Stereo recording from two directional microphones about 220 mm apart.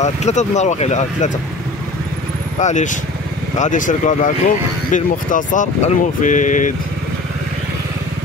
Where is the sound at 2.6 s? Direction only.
35° left (ahead or behind).